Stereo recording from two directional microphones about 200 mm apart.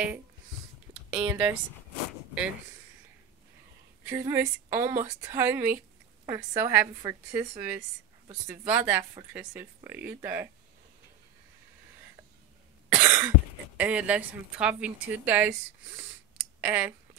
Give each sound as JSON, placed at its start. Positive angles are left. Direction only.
{"t": 0.9, "sound": "a sound", "side_deg": -30}
{"t": 1.2, "sound": "a woman's voice", "side_deg": -10}
{"t": 4.0, "sound": "a woman's voice", "side_deg": -15}
{"t": 12.9, "sound": "cough", "side_deg": -10}
{"t": 13.7, "sound": "a woman's voice", "side_deg": -5}
{"t": 16.6, "sound": "a woman's voice", "side_deg": -5}